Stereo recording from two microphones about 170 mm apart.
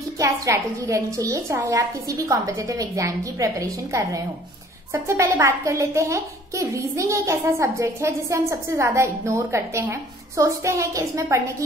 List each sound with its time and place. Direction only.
0.2 s a woman's voice: 20° right (ahead or behind)